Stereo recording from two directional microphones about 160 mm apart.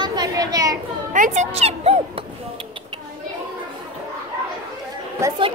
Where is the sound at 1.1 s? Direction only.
50° right (ahead or behind).